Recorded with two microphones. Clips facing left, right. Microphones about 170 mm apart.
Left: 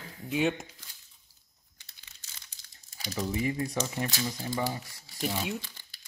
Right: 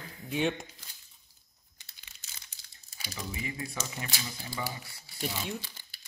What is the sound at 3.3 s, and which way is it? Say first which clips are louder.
Speech: left 8 dB; 45° left (ahead or behind).